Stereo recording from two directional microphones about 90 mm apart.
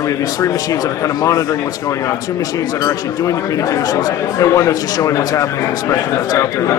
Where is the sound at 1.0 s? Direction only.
35° left (ahead or behind).